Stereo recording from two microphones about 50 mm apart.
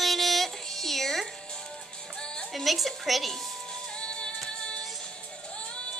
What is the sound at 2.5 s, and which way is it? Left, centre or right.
Speech, centre.